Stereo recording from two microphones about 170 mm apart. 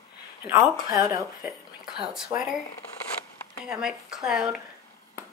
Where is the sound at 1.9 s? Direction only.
5° right (ahead or behind).